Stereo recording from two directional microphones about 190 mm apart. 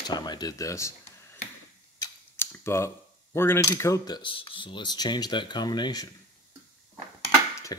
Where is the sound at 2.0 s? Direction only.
15° left (ahead or behind).